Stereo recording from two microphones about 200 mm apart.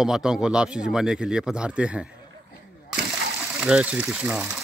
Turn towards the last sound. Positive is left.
turn(degrees=-5)  # may be behind; listen again after turning